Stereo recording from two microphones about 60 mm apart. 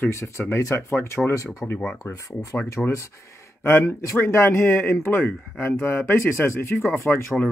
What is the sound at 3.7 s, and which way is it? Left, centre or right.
Speech, left.